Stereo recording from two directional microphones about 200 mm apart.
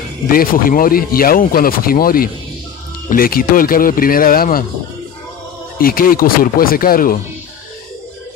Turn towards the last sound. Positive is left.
turn(degrees=45)  # may be behind; listen again after turning